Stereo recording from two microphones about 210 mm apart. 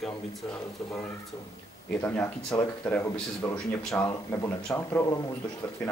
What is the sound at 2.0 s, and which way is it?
Speech, 10° left (ahead or behind).